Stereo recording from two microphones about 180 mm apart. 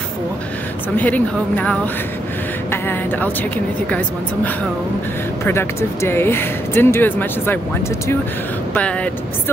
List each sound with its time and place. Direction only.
0.9 s speech: 10° left (ahead or behind)
5.4 s speech: 15° left (ahead or behind)
8.7 s speech: 5° left (ahead or behind)